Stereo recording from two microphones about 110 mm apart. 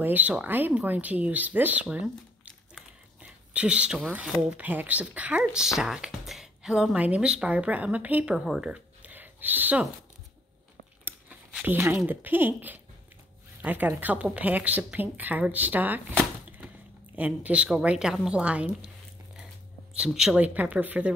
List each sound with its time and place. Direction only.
0.0 s speech: 15° right (ahead or behind)
3.2 s a sound: 10° right (ahead or behind)
4.1 s speech: 10° right (ahead or behind)
11.6 s speech: 20° right (ahead or behind)
20.2 s speech: 10° right (ahead or behind)